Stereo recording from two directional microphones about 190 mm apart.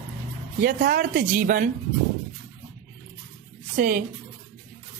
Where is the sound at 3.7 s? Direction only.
45° right (ahead or behind).